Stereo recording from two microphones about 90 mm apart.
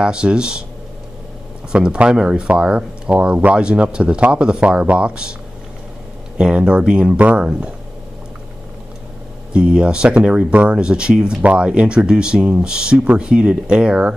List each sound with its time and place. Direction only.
0.0 s speech: 10° right (ahead or behind)
1.7 s speech: 10° right (ahead or behind)
6.3 s speech: 10° right (ahead or behind)
9.5 s speech: 10° right (ahead or behind)